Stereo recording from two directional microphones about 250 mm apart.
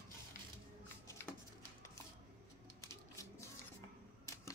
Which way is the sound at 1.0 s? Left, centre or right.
Centre.